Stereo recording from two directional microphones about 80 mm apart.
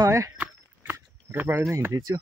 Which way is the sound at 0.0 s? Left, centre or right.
Right.